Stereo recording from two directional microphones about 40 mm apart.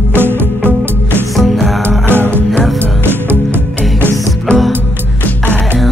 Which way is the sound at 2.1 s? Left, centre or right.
Right.